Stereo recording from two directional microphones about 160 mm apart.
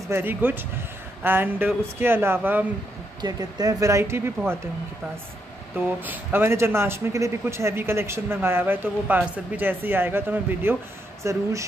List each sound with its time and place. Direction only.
0.1 s speech: 15° right (ahead or behind)
3.2 s speech: 25° right (ahead or behind)
5.8 s speech: 10° right (ahead or behind)